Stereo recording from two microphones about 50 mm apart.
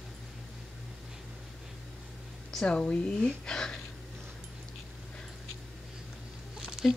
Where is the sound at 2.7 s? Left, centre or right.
Left.